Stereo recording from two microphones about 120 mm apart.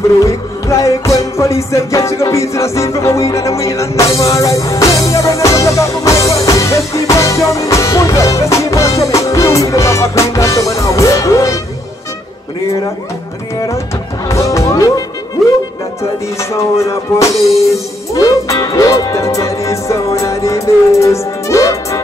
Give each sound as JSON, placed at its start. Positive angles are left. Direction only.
{"t": 0.2, "sound": "music", "side_deg": 25}
{"t": 14.3, "sound": "music", "side_deg": 25}